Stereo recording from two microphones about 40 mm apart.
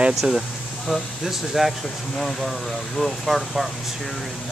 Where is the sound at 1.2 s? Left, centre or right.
Centre.